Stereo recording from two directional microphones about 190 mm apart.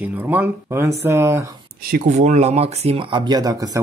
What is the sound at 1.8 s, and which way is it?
Speech, 45° right (ahead or behind).